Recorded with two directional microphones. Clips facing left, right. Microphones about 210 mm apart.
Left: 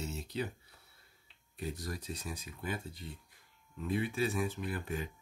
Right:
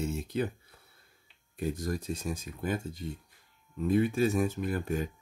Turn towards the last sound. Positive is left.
turn(degrees=-45)  # may be behind; listen again after turning